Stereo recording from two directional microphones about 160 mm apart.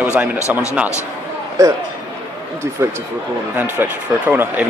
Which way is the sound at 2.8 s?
15° right (ahead or behind).